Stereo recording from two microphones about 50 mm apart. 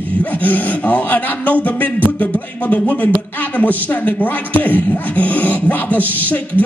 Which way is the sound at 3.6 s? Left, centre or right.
Left.